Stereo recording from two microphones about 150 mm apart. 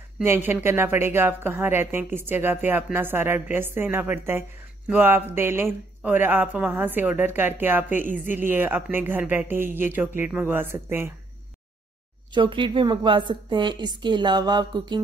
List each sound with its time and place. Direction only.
0.2 s a woman's voice: 15° right (ahead or behind)
12.3 s a woman's voice: 35° right (ahead or behind)